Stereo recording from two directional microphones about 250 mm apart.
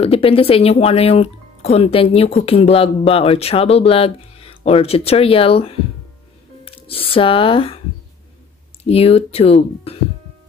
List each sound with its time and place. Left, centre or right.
0.0 s speech: left
8.8 s speech: left